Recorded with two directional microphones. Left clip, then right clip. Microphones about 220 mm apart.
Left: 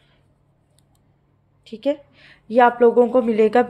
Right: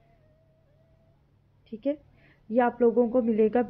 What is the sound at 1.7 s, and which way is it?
A woman's voice, centre (ahead or behind).